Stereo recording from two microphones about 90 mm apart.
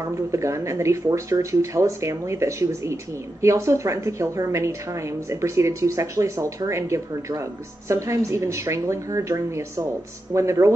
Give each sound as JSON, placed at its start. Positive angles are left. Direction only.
{"t": 0.0, "sound": "speech", "side_deg": -35}